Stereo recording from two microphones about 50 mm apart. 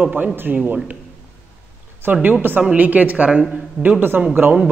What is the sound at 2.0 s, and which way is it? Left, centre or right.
A man's voice, right.